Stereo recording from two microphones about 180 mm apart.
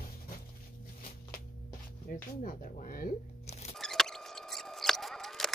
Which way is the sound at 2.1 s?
45° left (ahead or behind).